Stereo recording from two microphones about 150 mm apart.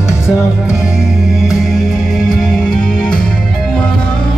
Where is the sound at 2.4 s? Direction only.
5° left (ahead or behind).